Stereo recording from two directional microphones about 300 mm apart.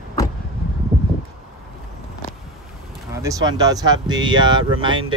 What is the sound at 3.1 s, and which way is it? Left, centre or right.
Speech, centre.